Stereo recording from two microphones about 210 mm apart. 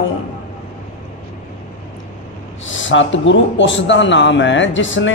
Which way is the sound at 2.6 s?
65° left (ahead or behind).